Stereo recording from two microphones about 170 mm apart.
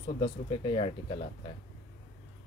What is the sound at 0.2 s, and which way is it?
Speech, 35° left (ahead or behind).